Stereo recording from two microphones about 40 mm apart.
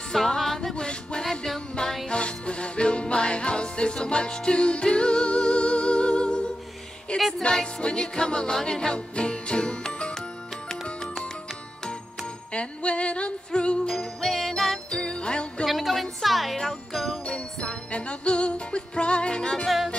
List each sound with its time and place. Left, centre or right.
0.4 s music: centre
0.7 s music: left
1.2 s music: centre
2.0 s music: left
7.2 s music: centre
7.4 s music: left
12.5 s music: left
13.9 s music: centre
14.9 s music: left
15.6 s music: centre
17.3 s music: left
19.4 s music: centre